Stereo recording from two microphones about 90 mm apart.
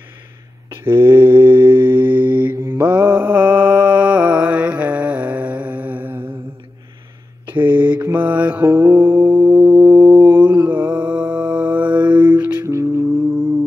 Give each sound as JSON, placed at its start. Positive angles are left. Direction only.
{"t": 0.7, "sound": "mantra", "side_deg": -25}
{"t": 7.5, "sound": "mantra", "side_deg": -20}
{"t": 10.4, "sound": "mantra", "side_deg": -55}
{"t": 10.7, "sound": "mantra", "side_deg": -15}
{"t": 12.6, "sound": "music", "side_deg": -35}